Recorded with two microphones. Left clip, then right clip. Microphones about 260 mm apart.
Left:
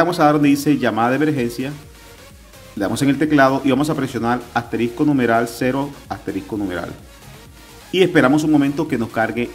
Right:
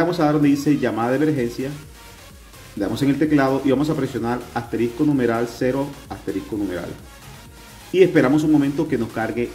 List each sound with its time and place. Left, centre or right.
0.0 s speech: centre
2.8 s speech: centre
7.9 s speech: centre